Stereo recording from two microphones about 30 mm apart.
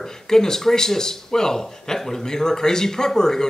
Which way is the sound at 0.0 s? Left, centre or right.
Centre.